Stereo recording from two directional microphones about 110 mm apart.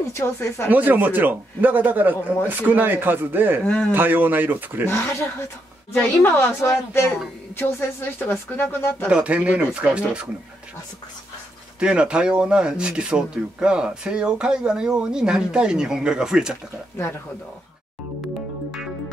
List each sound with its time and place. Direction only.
0.0 s a woman's voice: 25° left (ahead or behind)
0.7 s speech: 15° right (ahead or behind)
3.6 s a man's voice: 10° left (ahead or behind)
3.9 s speech: 15° right (ahead or behind)
4.8 s a woman's voice: 25° left (ahead or behind)
8.2 s a woman's voice: 20° left (ahead or behind)
9.1 s speech: 10° right (ahead or behind)
11.8 s speech: 10° right (ahead or behind)